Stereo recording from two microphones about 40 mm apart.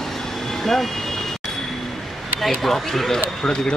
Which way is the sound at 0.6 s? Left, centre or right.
Centre.